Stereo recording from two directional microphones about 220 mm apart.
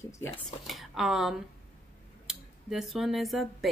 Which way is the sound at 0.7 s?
Centre (ahead or behind).